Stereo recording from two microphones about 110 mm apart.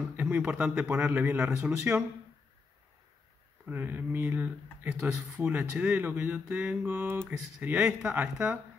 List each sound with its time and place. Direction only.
0.1 s speech: 15° right (ahead or behind)
3.6 s speech: 15° right (ahead or behind)